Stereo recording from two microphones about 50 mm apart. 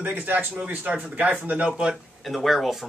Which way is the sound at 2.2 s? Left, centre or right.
Centre.